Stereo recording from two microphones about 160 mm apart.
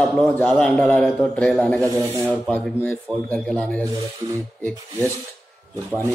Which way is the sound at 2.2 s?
5° left (ahead or behind).